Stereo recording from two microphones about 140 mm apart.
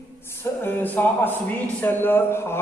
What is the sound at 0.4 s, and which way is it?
A man's voice, 15° left (ahead or behind).